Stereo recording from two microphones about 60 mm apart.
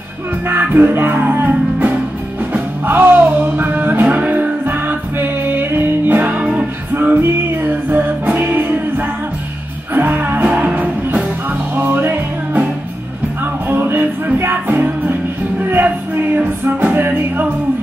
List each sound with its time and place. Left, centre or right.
0.5 s music: right
10.5 s music: right
11.7 s music: right
13.7 s music: right